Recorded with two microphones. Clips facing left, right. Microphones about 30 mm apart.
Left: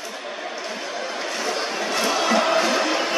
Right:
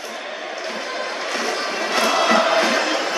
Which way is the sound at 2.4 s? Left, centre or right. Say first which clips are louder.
Right 2 dB; right.